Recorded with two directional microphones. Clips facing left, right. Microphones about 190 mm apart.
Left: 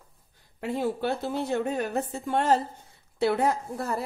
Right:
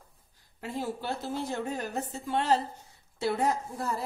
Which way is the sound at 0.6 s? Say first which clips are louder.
Left 7 dB; 60° left (ahead or behind).